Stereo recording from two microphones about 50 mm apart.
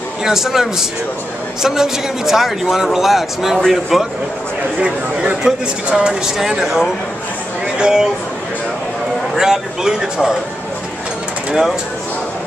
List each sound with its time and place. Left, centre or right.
0.2 s a man's voice: centre
4.8 s speech: centre
7.6 s a sound: centre
9.4 s speech: centre